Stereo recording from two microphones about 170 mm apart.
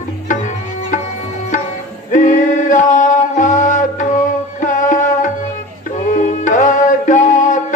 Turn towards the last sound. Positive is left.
turn(degrees=50)  # may be behind; listen again after turning